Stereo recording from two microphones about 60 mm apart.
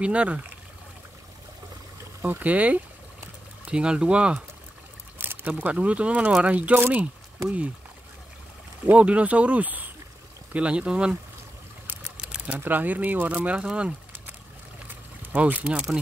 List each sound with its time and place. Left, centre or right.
0.0 s speech: right
2.2 s speech: right
5.2 s a sound: right
5.7 s speech: right
8.9 s speech: right
12.2 s sewing machine: centre
12.5 s speech: right
15.3 s speech: right